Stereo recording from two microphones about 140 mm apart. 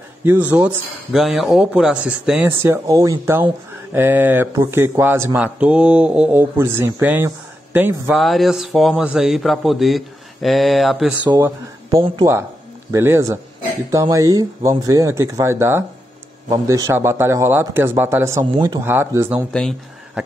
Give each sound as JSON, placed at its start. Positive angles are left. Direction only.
{"t": 0.2, "sound": "speech", "side_deg": -15}
{"t": 1.1, "sound": "a man's voice", "side_deg": 0}
{"t": 2.6, "sound": "a man's voice", "side_deg": -20}
{"t": 8.2, "sound": "a man's voice", "side_deg": 0}
{"t": 12.9, "sound": "a man's voice", "side_deg": -20}